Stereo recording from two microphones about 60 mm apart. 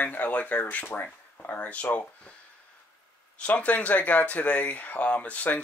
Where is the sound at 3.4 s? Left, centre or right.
Left.